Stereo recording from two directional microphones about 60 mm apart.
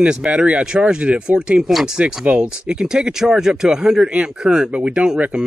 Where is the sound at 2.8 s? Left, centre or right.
Centre.